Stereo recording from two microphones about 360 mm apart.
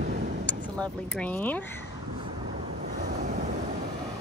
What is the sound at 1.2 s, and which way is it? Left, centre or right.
Speech, centre.